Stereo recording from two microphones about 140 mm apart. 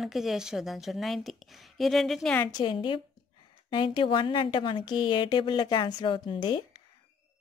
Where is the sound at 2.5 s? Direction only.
35° left (ahead or behind).